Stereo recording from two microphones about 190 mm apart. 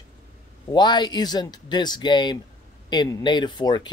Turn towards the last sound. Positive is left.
turn(degrees=25)  # may be behind; listen again after turning